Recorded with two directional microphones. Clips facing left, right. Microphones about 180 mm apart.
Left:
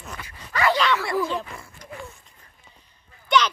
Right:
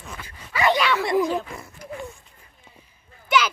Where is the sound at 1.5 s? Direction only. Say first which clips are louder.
Right 4 dB; 15° right (ahead or behind).